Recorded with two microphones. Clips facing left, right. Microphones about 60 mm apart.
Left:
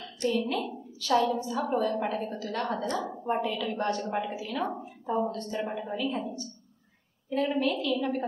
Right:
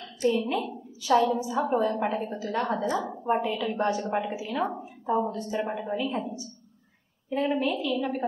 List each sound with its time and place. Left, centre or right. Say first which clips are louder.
0.2 s a woman's voice: right 3 dB; centre